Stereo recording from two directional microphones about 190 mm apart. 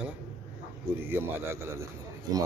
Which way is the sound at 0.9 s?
10° right (ahead or behind).